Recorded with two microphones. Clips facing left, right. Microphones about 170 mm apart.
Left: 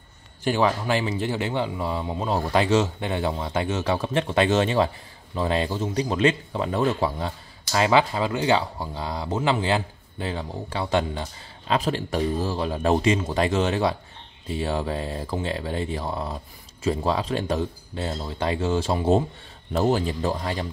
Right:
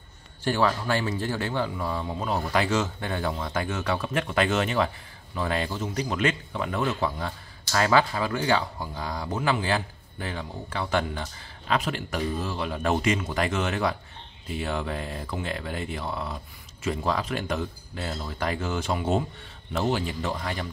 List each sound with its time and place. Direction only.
0.4 s a man's voice: 15° left (ahead or behind)